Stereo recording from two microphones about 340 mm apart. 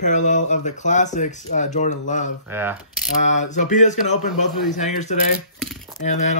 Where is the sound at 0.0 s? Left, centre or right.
Left.